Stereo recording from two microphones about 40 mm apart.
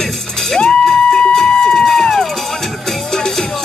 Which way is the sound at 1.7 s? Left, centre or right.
Centre.